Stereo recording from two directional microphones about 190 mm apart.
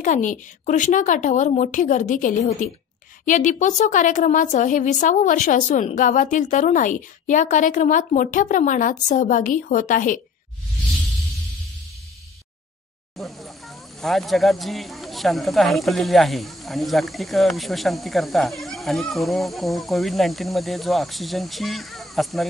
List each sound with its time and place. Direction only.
0.0 s a woman's voice: 40° left (ahead or behind)
13.1 s speech: centre (ahead or behind)